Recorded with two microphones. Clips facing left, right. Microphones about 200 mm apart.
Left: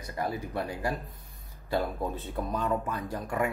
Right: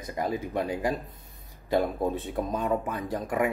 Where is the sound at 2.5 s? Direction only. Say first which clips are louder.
Right 1 dB; 15° right (ahead or behind).